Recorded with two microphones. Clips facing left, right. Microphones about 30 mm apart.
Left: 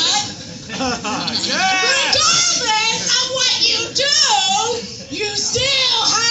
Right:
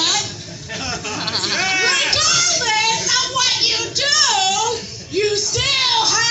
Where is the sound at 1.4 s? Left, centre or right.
Left.